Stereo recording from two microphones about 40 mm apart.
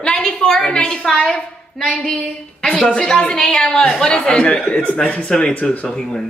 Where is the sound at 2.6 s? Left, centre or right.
Left.